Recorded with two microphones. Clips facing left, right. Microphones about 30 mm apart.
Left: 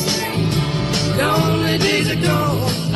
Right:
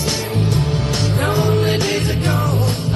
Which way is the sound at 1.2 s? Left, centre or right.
Left.